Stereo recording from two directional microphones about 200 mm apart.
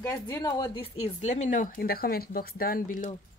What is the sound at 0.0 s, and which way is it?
Speech, 15° left (ahead or behind).